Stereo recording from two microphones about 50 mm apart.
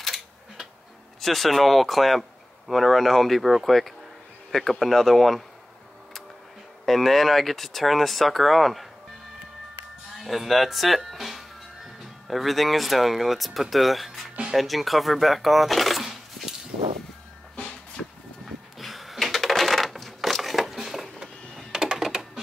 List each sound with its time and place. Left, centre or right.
0.0 s a sound: centre
1.2 s speech: centre
6.9 s speech: centre
10.1 s speech: centre
17.6 s music: left
18.8 s crushing: centre
21.7 s typing: centre